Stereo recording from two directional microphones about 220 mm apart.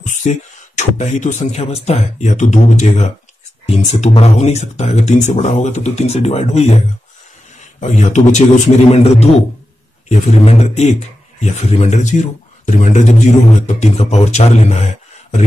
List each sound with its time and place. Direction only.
0.0 s speech: 30° left (ahead or behind)
7.8 s a man's voice: 30° left (ahead or behind)